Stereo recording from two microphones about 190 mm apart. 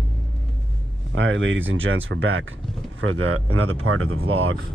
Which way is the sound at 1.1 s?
80° right.